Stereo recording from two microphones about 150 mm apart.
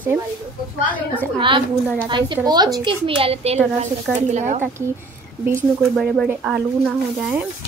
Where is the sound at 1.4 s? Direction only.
35° right (ahead or behind).